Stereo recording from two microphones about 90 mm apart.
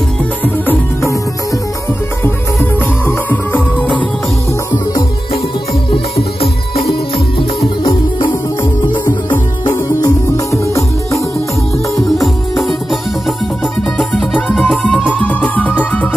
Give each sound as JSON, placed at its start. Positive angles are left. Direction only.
{"t": 2.2, "sound": "music", "side_deg": 20}
{"t": 6.4, "sound": "music", "side_deg": 80}
{"t": 10.0, "sound": "music", "side_deg": 35}
{"t": 12.2, "sound": "music", "side_deg": 0}
{"t": 13.9, "sound": "music", "side_deg": 10}